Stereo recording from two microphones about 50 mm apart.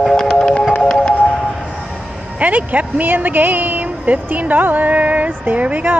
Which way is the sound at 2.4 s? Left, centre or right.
Right.